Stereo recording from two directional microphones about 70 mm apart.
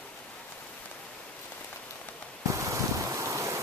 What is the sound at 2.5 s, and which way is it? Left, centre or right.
Waves, right.